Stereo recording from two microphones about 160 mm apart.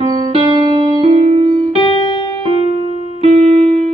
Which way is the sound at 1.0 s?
35° right (ahead or behind).